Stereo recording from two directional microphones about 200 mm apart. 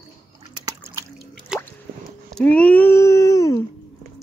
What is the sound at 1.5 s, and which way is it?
Drip, 5° right (ahead or behind).